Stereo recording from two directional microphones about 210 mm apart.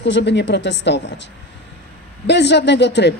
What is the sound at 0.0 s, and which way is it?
A woman's voice, 55° left (ahead or behind).